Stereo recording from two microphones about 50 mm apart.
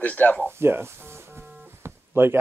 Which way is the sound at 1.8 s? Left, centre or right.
Right.